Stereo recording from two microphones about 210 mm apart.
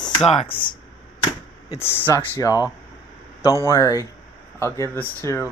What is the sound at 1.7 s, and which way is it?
Speech, 15° left (ahead or behind).